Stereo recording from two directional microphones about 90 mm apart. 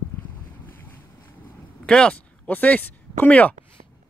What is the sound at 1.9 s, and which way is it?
Speech, 10° left (ahead or behind).